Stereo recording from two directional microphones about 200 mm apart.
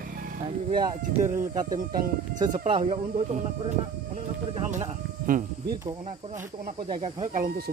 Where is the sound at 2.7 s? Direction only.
35° right (ahead or behind).